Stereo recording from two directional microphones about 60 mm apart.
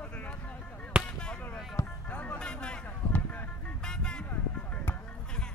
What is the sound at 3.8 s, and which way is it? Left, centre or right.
Vehicle, centre.